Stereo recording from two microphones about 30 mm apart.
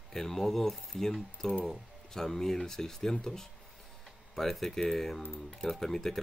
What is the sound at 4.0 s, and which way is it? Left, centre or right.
Tick-tock, centre.